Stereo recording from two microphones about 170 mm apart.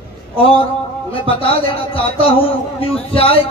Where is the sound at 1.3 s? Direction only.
30° left (ahead or behind).